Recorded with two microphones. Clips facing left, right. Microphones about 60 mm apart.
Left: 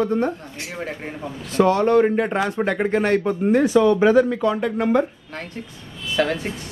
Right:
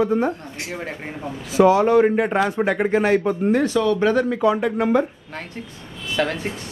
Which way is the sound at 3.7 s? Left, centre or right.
Centre.